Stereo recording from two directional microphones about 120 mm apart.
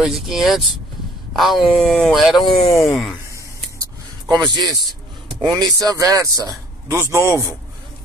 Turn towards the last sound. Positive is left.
turn(degrees=-25)  # may be behind; listen again after turning